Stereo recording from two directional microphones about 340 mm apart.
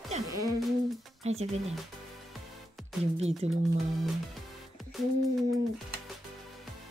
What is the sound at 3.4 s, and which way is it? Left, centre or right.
Speech, centre.